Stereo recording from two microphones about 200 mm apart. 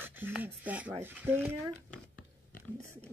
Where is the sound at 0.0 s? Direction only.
10° right (ahead or behind).